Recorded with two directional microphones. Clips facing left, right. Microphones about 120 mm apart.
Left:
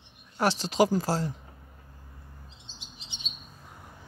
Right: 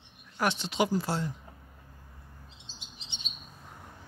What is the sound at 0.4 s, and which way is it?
Speech, 35° left (ahead or behind).